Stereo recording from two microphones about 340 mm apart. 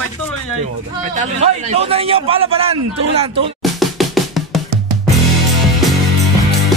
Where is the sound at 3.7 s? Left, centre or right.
Centre.